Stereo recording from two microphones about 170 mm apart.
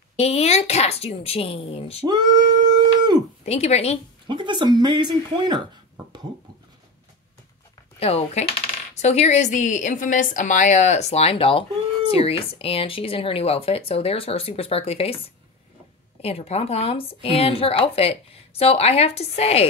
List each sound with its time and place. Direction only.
0.2 s a woman's voice: 40° left (ahead or behind)
2.0 s a sound: 25° right (ahead or behind)
3.4 s a woman's voice: 40° left (ahead or behind)
4.3 s speech: 25° right (ahead or behind)
8.0 s a woman's voice: 35° left (ahead or behind)